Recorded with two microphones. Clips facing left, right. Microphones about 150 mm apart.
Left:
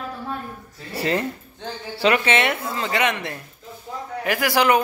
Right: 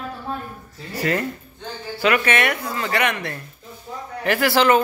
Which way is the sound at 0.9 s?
25° left (ahead or behind).